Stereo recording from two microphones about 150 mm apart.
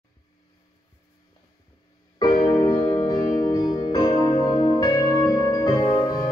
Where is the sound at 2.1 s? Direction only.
30° left (ahead or behind).